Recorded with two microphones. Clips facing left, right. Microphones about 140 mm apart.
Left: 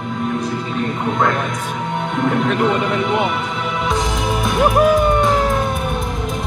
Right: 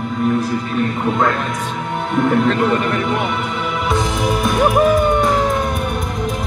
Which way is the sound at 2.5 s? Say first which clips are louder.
Right 1 dB; 20° left (ahead or behind).